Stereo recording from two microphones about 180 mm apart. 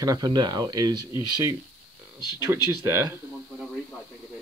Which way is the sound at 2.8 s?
15° right (ahead or behind).